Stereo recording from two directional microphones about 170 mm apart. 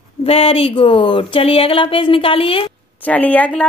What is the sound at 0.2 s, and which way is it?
Speech, 35° left (ahead or behind).